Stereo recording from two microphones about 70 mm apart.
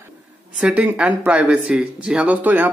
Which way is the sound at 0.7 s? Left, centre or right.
Centre.